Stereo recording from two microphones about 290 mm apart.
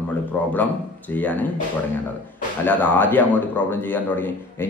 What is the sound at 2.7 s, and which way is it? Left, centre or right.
Speech, centre.